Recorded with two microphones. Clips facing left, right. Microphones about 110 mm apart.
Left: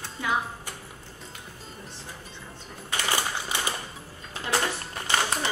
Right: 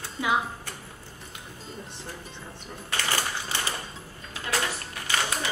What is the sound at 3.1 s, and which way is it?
Typewriter, 15° left (ahead or behind).